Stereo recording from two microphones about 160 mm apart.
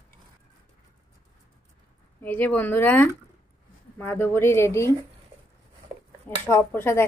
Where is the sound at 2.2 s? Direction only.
10° left (ahead or behind).